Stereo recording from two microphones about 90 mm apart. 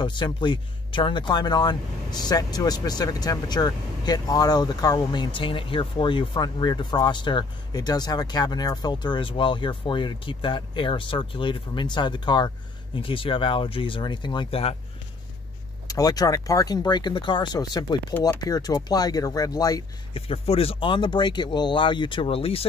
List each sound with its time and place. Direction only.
0.0 s speech: 60° left (ahead or behind)
13.0 s speech: 75° left (ahead or behind)
15.9 s speech: 45° left (ahead or behind)
20.2 s speech: 90° left